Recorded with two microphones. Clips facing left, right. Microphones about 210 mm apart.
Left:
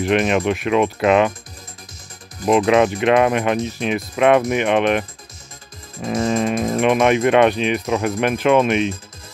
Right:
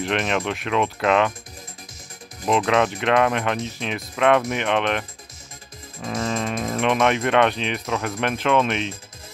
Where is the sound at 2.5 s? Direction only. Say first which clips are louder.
Left 5 dB; 15° left (ahead or behind).